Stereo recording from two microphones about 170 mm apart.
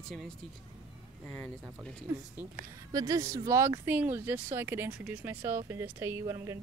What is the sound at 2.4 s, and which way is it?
Speech, 10° right (ahead or behind).